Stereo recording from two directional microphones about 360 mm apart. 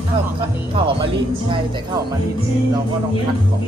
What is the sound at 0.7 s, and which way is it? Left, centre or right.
Music, centre.